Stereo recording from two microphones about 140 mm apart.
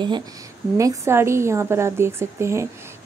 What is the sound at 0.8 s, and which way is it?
A woman's voice, 20° right (ahead or behind).